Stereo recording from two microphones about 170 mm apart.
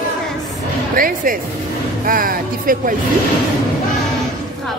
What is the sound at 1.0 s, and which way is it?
Speech, 55° right (ahead or behind).